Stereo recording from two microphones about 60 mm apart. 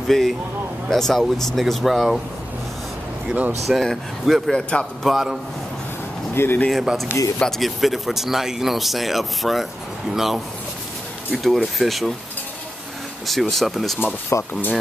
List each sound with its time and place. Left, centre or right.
0.1 s speech: centre
3.3 s speech: right
3.6 s speech: centre
5.0 s speech: centre
6.3 s speech: left
6.7 s speech: centre
13.3 s speech: centre
14.3 s speech: left